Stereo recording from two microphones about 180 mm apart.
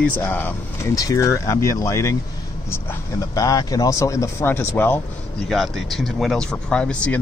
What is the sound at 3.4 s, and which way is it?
Speech, 20° left (ahead or behind).